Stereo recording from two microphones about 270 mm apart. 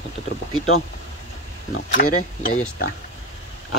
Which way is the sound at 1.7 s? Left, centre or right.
Left.